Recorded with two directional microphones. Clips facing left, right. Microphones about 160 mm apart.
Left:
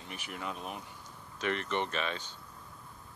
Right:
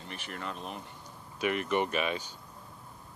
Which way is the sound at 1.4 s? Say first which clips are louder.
Right 4 dB; 10° right (ahead or behind).